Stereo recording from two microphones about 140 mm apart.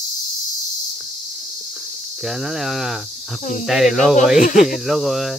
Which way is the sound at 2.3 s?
Centre (ahead or behind).